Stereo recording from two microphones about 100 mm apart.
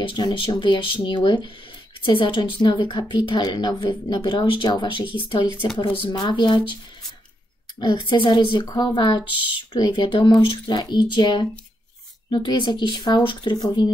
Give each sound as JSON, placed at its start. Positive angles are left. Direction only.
{"t": 0.0, "sound": "speech", "side_deg": 55}
{"t": 7.8, "sound": "speech", "side_deg": 50}